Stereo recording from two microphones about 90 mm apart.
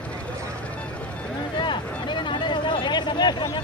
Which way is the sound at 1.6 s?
60° left (ahead or behind).